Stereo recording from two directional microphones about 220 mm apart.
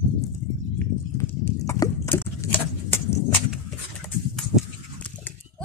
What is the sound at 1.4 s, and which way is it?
Horse, 10° left (ahead or behind).